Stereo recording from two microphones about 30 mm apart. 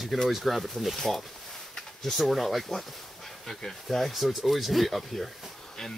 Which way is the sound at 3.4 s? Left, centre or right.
Centre.